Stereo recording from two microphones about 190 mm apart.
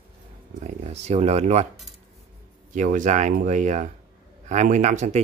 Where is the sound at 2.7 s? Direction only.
40° right (ahead or behind).